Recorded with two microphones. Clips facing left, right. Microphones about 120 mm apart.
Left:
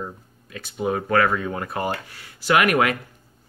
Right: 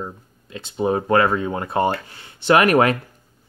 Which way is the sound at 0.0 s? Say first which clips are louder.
Right 2 dB; 20° right (ahead or behind).